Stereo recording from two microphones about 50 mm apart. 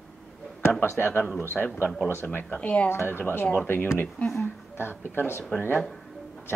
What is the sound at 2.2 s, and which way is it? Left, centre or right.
Speech, left.